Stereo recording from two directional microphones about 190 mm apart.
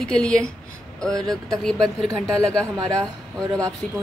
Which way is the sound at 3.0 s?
20° right (ahead or behind).